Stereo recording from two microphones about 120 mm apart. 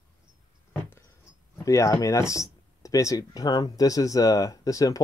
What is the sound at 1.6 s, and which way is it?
Speech, 25° left (ahead or behind).